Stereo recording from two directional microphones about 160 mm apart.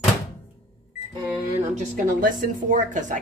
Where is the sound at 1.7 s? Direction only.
50° right (ahead or behind).